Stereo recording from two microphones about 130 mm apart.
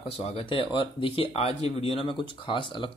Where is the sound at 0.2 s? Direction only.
50° left (ahead or behind).